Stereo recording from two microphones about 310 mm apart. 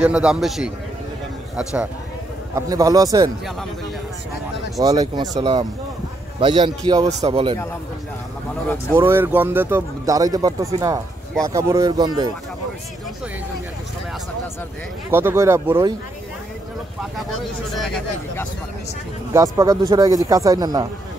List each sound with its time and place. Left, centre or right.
0.0 s a man's voice: centre
4.7 s speech: centre
8.9 s speech: centre
15.0 s speech: centre
17.7 s a man's voice: centre
19.3 s speech: centre